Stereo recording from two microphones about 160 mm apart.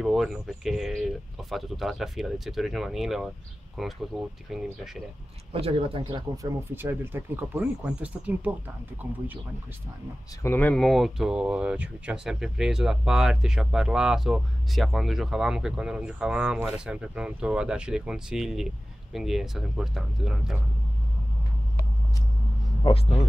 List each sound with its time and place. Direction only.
0.0 s speech: centre (ahead or behind)
5.5 s speech: 35° right (ahead or behind)
6.3 s speech: 15° right (ahead or behind)
10.4 s speech: 10° left (ahead or behind)